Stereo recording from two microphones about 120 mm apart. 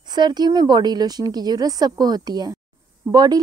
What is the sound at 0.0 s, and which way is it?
Speech, 35° right (ahead or behind).